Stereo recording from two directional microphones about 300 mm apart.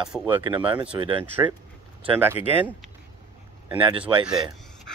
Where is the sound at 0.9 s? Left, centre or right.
Centre.